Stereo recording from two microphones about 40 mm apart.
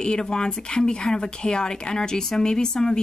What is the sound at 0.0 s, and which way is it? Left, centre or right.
Speech, centre.